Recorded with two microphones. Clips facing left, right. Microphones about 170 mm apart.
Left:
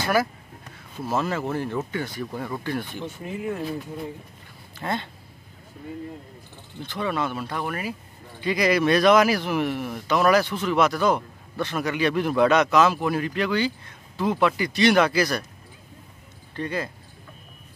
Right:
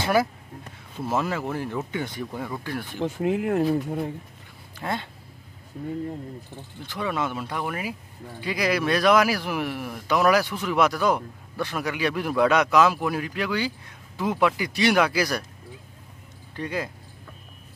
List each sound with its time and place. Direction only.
1.1 s speech: 10° right (ahead or behind)
2.3 s a man's voice: 5° right (ahead or behind)
3.0 s speech: 75° right (ahead or behind)
4.7 s speech: 10° right (ahead or behind)
7.0 s a man's voice: 10° right (ahead or behind)
16.5 s speech: 10° right (ahead or behind)